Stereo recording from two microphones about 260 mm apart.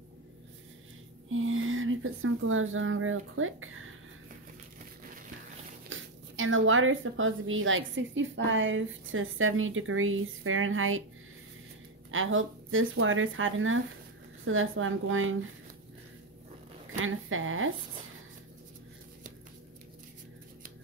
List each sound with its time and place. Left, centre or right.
1.3 s speech: right
5.9 s a woman's voice: right
12.1 s a woman's voice: right
17.0 s a woman's voice: right